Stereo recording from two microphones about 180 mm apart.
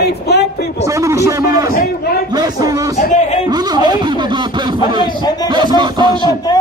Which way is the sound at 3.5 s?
20° right (ahead or behind).